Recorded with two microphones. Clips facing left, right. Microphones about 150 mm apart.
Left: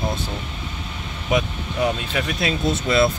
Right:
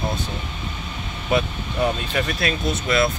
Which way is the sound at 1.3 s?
10° left (ahead or behind).